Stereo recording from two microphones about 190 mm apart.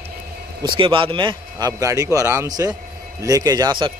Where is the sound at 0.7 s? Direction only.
25° right (ahead or behind).